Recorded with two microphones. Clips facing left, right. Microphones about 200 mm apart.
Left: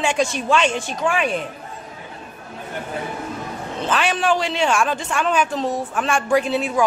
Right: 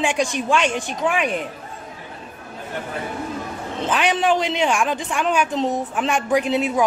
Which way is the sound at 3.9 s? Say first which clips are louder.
Right 1 dB; 20° right (ahead or behind).